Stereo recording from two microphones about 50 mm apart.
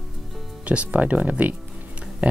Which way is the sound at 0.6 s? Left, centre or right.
Right.